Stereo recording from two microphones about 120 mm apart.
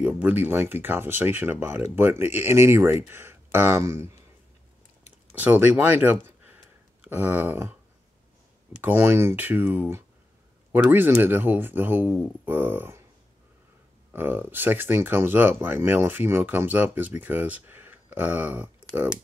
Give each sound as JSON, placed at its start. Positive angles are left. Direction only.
{"t": 0.0, "sound": "speech", "side_deg": -15}
{"t": 5.3, "sound": "speech", "side_deg": -15}
{"t": 7.0, "sound": "a sound", "side_deg": -15}
{"t": 8.8, "sound": "speech", "side_deg": -20}
{"t": 12.4, "sound": "a sound", "side_deg": -15}
{"t": 14.1, "sound": "speech", "side_deg": -15}